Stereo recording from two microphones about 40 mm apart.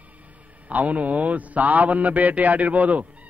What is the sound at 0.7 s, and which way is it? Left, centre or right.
A man's voice, right.